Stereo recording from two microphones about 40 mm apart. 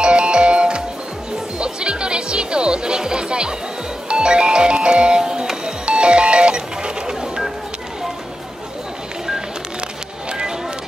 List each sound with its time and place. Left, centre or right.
0.0 s music: right